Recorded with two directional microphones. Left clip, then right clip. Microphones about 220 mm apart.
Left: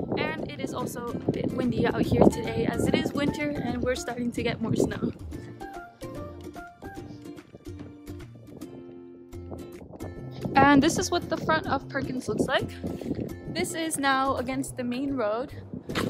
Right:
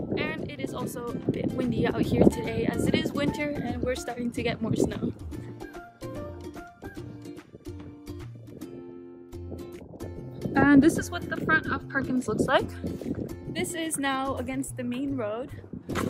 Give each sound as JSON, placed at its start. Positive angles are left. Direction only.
{"t": 0.1, "sound": "speech", "side_deg": 0}
{"t": 10.5, "sound": "speech", "side_deg": 30}
{"t": 12.3, "sound": "speech", "side_deg": -30}
{"t": 12.6, "sound": "speech", "side_deg": 0}